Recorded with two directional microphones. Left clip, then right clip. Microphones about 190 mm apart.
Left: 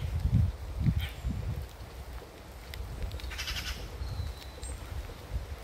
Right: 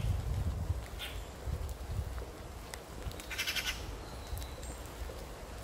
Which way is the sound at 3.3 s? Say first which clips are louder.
Right 2 dB; 20° right (ahead or behind).